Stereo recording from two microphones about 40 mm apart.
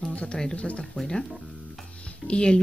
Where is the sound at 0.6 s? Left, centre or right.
Left.